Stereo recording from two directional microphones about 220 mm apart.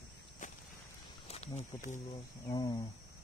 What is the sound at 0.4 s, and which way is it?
Walk, 35° left (ahead or behind).